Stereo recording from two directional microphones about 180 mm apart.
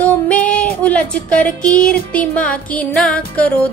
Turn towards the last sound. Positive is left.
turn(degrees=5)  # may be behind; listen again after turning